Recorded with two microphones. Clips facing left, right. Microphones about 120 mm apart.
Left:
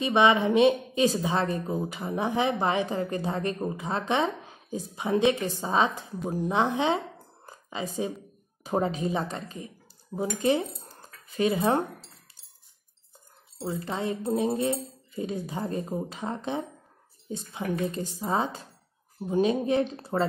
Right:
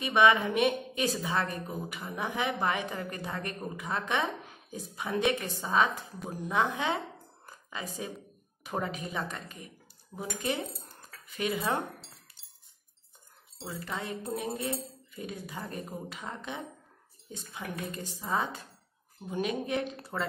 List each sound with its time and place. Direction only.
0.0 s a woman's voice: 25° left (ahead or behind)
7.4 s a sound: 25° left (ahead or behind)
8.6 s a woman's voice: 30° left (ahead or behind)
10.8 s dishes: 30° left (ahead or behind)
13.7 s a woman's voice: 25° left (ahead or behind)